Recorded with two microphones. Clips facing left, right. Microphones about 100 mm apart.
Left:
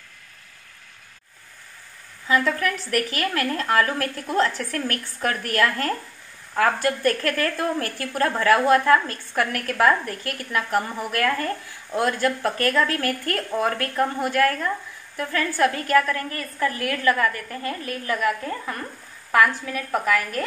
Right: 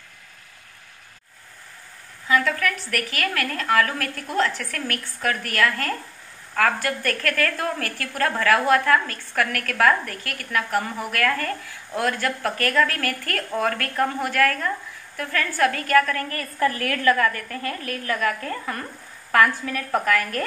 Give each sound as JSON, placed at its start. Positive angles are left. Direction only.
{"t": 2.2, "sound": "a woman's voice", "side_deg": 30}